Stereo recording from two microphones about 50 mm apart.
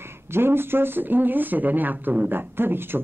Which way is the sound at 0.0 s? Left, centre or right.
Right.